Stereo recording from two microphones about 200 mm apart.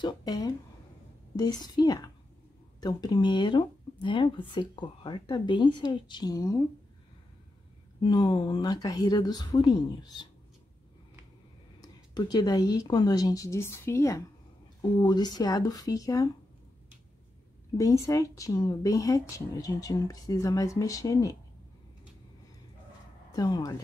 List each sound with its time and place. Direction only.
0.0 s speech: 20° left (ahead or behind)
8.0 s speech: 25° left (ahead or behind)
11.8 s speech: 20° left (ahead or behind)
17.7 s speech: 15° left (ahead or behind)
23.3 s speech: 20° left (ahead or behind)